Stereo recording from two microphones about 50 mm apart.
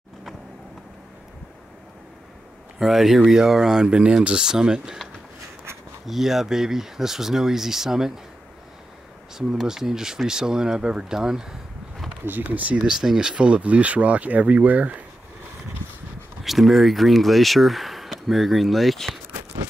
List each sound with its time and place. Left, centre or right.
2.8 s speech: centre
6.0 s speech: centre
9.4 s speech: centre
12.3 s speech: right
12.8 s speech: centre; by 15.0 s right
15.8 s a sound: left
16.4 s speech: centre